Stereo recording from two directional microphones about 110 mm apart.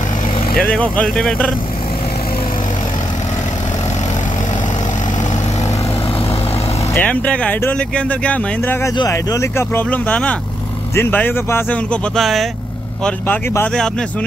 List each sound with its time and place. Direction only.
0.6 s speech: 5° left (ahead or behind)
6.9 s speech: 15° left (ahead or behind)
9.1 s speech: 25° left (ahead or behind)
12.2 s speech: centre (ahead or behind)
13.0 s speech: 15° left (ahead or behind)